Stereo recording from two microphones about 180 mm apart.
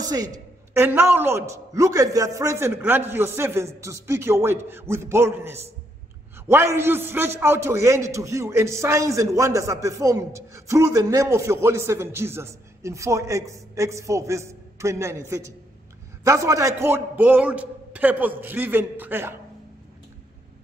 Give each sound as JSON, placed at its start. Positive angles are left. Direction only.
{"t": 0.0, "sound": "a man's voice", "side_deg": -20}